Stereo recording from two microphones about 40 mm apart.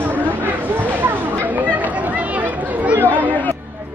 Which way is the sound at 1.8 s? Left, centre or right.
Right.